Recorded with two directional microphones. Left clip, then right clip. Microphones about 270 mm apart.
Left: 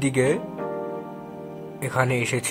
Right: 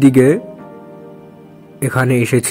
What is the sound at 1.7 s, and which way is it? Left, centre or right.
Speech, centre.